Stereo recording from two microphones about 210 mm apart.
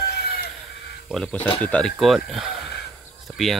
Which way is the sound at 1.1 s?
5° left (ahead or behind).